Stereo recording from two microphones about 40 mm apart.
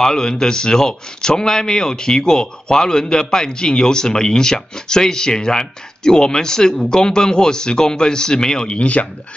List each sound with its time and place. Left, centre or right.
0.0 s speech: centre
8.7 s speech: left